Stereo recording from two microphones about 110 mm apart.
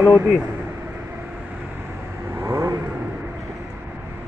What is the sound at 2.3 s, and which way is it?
Vehicle, 25° right (ahead or behind).